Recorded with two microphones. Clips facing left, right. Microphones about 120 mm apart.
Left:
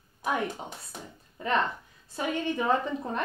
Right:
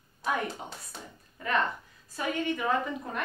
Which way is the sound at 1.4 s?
25° left (ahead or behind).